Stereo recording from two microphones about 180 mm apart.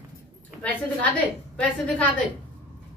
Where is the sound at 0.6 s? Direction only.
10° left (ahead or behind).